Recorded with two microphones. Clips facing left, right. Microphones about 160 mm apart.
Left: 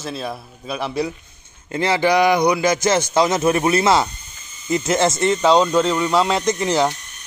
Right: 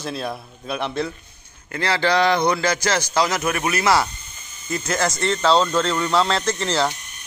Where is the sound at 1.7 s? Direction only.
20° left (ahead or behind).